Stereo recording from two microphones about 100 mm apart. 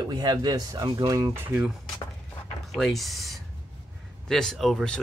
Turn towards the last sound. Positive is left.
turn(degrees=5)  # may be behind; listen again after turning